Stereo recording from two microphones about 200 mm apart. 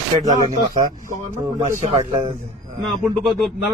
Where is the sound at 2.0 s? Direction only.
25° right (ahead or behind).